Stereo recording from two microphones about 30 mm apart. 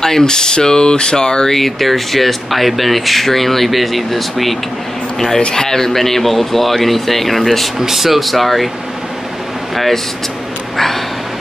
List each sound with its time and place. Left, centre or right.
0.0 s speech: centre
1.5 s speech: centre
5.5 s speech: centre
7.8 s speech: centre